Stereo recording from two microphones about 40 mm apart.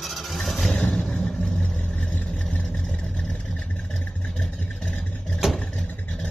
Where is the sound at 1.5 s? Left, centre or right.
Left.